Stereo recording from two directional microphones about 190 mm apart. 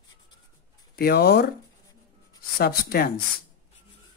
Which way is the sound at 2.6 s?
50° left (ahead or behind).